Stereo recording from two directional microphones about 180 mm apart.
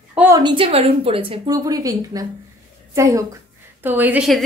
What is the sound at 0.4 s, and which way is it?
A woman's voice, 25° right (ahead or behind).